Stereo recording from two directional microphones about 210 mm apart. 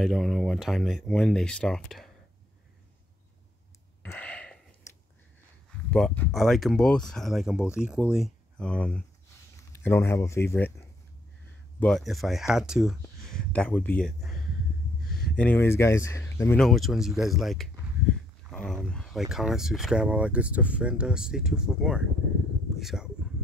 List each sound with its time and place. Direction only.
0.0 s speech: centre (ahead or behind)
4.0 s a sound: 5° left (ahead or behind)
5.9 s speech: 5° left (ahead or behind)
11.8 s speech: centre (ahead or behind)